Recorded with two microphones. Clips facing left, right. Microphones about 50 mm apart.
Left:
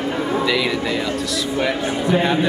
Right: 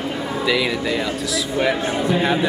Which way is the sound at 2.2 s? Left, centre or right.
Centre.